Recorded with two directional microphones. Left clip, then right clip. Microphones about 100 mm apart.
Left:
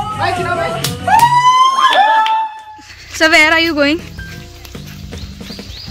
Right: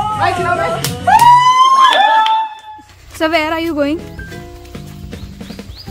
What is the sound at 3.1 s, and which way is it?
Speech, 15° right (ahead or behind).